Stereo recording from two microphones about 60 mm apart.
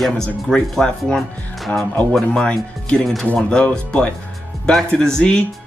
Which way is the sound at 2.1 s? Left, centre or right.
Centre.